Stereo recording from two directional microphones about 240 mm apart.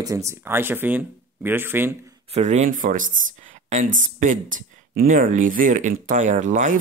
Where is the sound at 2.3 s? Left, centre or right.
Right.